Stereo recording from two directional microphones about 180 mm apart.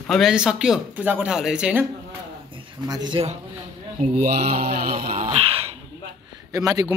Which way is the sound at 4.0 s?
45° right (ahead or behind).